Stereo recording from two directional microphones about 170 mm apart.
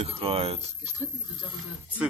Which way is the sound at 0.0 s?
35° right (ahead or behind).